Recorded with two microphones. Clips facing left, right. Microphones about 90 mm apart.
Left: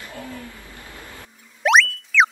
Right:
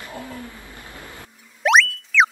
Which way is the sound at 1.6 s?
Centre (ahead or behind).